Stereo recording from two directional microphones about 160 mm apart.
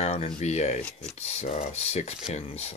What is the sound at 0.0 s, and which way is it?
Speech, 40° left (ahead or behind).